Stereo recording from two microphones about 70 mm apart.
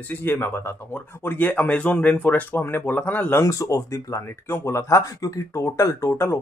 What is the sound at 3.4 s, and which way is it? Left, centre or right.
Speech, left.